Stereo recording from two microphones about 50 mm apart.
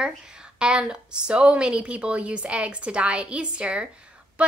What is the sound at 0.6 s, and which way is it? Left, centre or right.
A woman's voice, centre.